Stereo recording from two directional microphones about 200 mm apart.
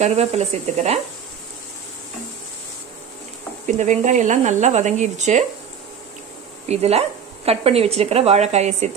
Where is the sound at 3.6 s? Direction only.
35° right (ahead or behind).